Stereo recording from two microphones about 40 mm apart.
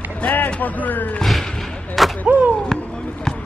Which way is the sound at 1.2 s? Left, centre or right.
Centre.